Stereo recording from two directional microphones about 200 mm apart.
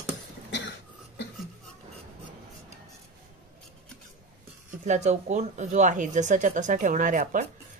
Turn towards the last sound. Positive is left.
turn(degrees=-40)  # may be behind; listen again after turning